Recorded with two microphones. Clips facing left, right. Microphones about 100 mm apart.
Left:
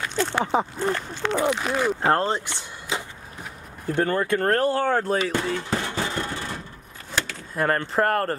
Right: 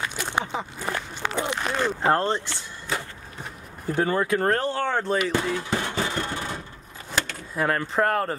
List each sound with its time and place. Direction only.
0.1 s speech: 15° right (ahead or behind)
1.6 s speech: 5° left (ahead or behind)
2.4 s a sound: 15° left (ahead or behind)
3.8 s speech: 5° right (ahead or behind)
5.3 s a sound: 5° right (ahead or behind)
7.2 s speech: centre (ahead or behind)